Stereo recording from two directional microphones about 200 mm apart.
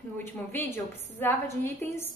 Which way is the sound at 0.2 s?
10° left (ahead or behind).